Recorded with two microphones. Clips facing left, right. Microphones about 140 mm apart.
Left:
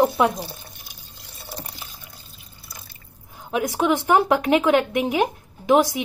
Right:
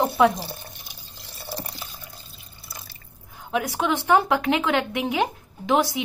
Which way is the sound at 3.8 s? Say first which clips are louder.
Left 2 dB; 15° left (ahead or behind).